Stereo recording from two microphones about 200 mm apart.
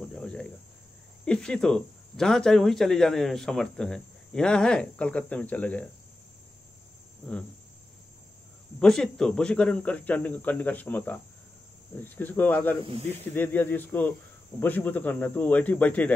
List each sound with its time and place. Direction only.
0.1 s cricket: 5° left (ahead or behind)
1.2 s speech: 5° left (ahead or behind)
8.7 s speech: 5° left (ahead or behind)